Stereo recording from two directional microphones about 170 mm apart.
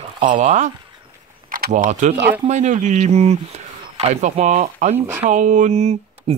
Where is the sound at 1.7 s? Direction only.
45° right (ahead or behind).